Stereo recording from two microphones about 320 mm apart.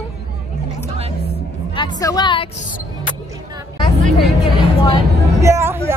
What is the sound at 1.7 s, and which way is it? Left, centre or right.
Speech, centre.